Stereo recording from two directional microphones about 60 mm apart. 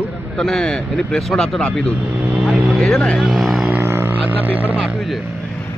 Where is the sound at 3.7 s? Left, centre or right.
Right.